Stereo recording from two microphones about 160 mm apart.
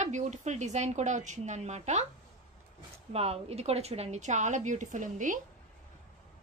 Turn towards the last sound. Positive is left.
turn(degrees=-55)  # may be behind; listen again after turning